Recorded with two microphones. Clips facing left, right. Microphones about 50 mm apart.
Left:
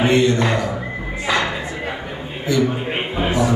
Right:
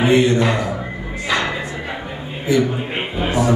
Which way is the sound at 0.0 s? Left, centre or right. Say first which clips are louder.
Right 1 dB; centre.